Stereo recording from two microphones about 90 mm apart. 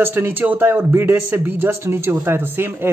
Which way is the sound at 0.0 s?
25° right (ahead or behind).